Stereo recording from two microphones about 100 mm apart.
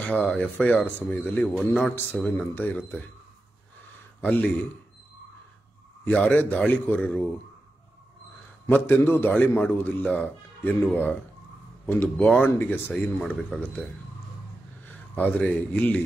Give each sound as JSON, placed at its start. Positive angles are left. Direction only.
{"t": 0.0, "sound": "a man's voice", "side_deg": 15}
{"t": 2.2, "sound": "speech", "side_deg": 15}
{"t": 4.2, "sound": "speech", "side_deg": 15}
{"t": 6.0, "sound": "speech", "side_deg": 15}
{"t": 8.6, "sound": "a man's voice", "side_deg": 20}
{"t": 15.1, "sound": "speech", "side_deg": 15}